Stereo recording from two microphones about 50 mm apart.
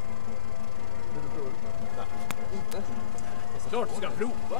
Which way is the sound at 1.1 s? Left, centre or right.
Centre.